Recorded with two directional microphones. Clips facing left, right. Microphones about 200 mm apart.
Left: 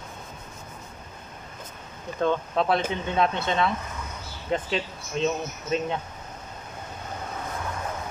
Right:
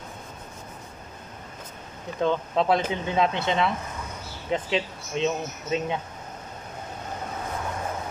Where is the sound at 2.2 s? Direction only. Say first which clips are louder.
Right 1 dB; 20° right (ahead or behind).